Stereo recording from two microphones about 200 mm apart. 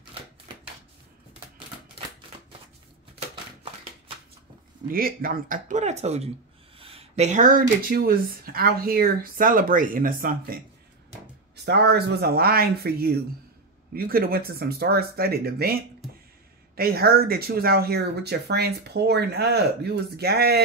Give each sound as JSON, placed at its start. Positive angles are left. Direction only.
{"t": 4.9, "sound": "speech", "side_deg": -45}
{"t": 11.5, "sound": "speech", "side_deg": -55}